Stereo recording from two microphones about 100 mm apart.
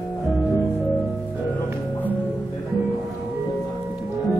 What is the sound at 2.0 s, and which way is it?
Music, 15° left (ahead or behind).